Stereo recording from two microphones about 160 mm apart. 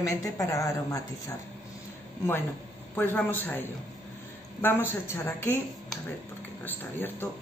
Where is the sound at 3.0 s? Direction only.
10° left (ahead or behind).